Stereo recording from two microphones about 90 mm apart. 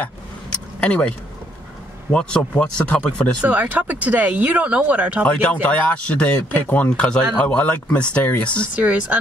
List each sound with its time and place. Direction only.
0.0 s vehicle: 15° left (ahead or behind)
2.1 s speech: 10° left (ahead or behind)
3.4 s speech: 15° right (ahead or behind)
5.2 s speech: 15° left (ahead or behind)
8.7 s speech: 15° right (ahead or behind)